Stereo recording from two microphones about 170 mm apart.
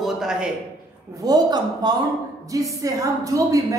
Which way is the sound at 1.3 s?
25° right (ahead or behind).